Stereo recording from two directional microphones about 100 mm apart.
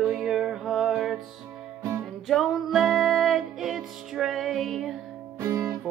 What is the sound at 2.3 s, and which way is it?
Music, centre (ahead or behind).